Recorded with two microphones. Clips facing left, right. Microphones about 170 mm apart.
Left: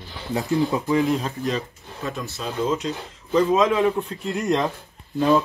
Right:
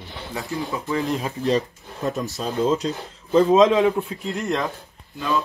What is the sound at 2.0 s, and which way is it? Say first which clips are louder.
Speech: right 4 dB; 40° right (ahead or behind).